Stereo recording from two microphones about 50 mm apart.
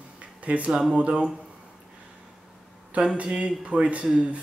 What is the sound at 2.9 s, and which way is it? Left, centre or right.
Speech, right.